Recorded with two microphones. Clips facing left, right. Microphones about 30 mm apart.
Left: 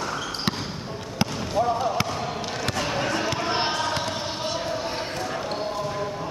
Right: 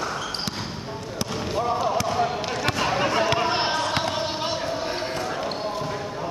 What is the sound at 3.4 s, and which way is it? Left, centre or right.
Basketball bounce, centre.